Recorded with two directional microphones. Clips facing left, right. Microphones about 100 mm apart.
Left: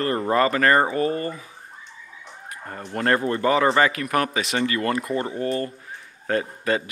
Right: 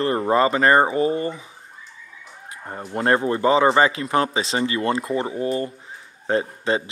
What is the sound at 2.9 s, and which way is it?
Speech, 20° right (ahead or behind).